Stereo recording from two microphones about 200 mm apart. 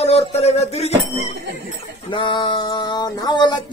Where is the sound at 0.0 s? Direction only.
30° left (ahead or behind).